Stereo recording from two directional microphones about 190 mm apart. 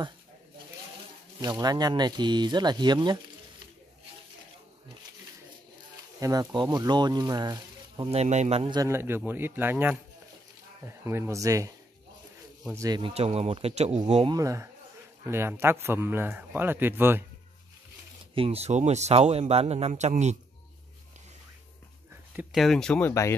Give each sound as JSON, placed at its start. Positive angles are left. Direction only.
{"t": 1.4, "sound": "speech", "side_deg": -20}
{"t": 6.1, "sound": "speech", "side_deg": -20}
{"t": 11.1, "sound": "speech", "side_deg": -15}
{"t": 12.7, "sound": "speech", "side_deg": -20}
{"t": 14.3, "sound": "speech", "side_deg": -15}
{"t": 18.3, "sound": "speech", "side_deg": -30}
{"t": 22.3, "sound": "speech", "side_deg": -5}